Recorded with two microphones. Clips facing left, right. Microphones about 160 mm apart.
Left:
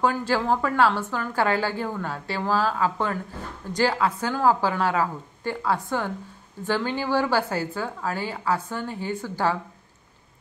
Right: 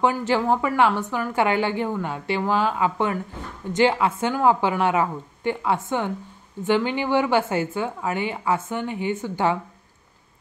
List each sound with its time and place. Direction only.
0.0 s a woman's voice: 20° right (ahead or behind)